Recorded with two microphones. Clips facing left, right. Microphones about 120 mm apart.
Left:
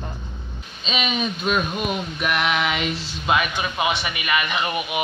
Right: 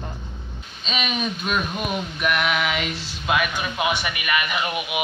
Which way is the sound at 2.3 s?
Centre (ahead or behind).